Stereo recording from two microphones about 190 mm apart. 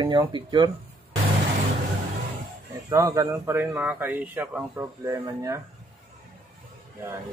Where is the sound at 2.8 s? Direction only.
15° right (ahead or behind).